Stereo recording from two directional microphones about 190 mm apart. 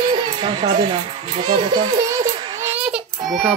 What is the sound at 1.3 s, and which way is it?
Children playing, 30° right (ahead or behind).